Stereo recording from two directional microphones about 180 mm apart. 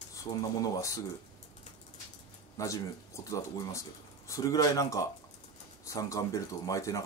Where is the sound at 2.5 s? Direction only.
15° left (ahead or behind).